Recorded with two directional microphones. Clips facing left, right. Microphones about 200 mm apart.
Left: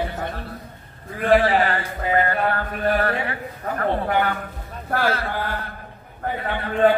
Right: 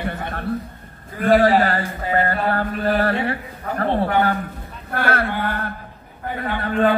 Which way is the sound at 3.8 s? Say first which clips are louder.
Right 3 dB; 30° right (ahead or behind).